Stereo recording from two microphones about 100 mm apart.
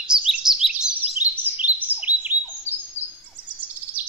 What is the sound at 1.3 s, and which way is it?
Chirp, 20° right (ahead or behind).